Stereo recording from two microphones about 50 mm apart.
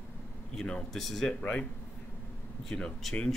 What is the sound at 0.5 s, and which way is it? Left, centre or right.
Speech, centre.